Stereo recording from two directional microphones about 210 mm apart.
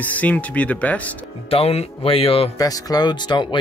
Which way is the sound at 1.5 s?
30° left (ahead or behind).